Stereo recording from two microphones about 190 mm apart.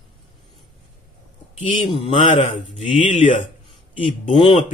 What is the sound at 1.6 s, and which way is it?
Speech, 25° left (ahead or behind).